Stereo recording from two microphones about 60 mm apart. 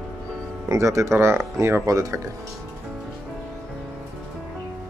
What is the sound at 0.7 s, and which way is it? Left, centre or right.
Speech, right.